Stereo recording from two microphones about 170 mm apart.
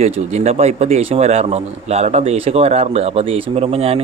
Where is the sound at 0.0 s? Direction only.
40° right (ahead or behind).